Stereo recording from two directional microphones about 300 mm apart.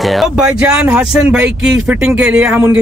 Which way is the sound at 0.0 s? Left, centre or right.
Centre.